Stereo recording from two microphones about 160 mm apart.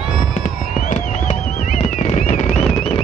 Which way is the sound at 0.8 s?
50° left (ahead or behind).